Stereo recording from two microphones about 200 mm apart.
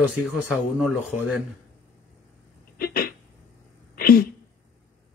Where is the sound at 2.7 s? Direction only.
50° left (ahead or behind).